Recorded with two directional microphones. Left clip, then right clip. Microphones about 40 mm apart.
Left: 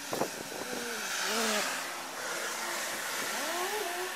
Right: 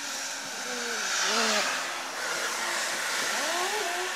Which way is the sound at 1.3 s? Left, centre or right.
Centre.